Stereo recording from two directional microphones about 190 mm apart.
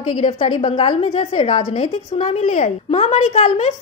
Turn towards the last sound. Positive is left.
turn(degrees=35)  # may be behind; listen again after turning